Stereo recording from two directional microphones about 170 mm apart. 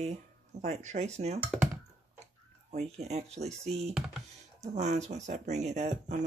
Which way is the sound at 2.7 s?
40° right (ahead or behind).